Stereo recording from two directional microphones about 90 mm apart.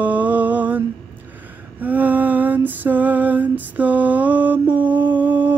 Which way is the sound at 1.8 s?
20° right (ahead or behind).